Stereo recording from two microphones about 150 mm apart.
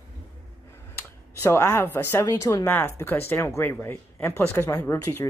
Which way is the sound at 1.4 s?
20° left (ahead or behind).